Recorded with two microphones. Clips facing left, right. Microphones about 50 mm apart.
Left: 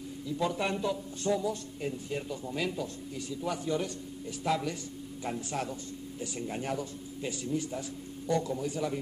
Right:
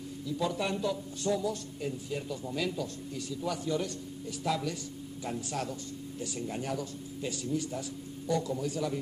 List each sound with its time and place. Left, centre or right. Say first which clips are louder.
0.5 s a man's voice: even; left
8.5 s a man's voice: even; centre